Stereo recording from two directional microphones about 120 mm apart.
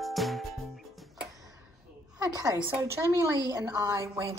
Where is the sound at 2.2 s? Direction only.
30° right (ahead or behind).